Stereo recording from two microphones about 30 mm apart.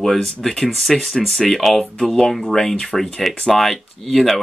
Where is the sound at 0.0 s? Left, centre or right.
Centre.